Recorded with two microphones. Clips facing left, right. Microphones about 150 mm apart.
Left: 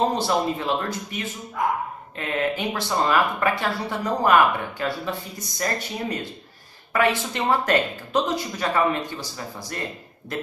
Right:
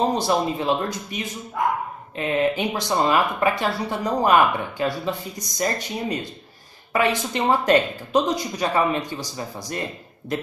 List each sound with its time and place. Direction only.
0.2 s speech: 15° right (ahead or behind)